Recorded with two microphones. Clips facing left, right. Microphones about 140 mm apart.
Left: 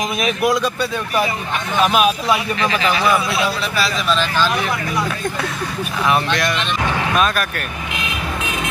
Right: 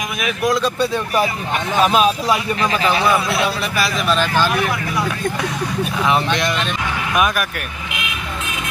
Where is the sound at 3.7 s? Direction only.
10° right (ahead or behind).